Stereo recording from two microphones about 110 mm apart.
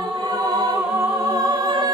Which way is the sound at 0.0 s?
45° right (ahead or behind).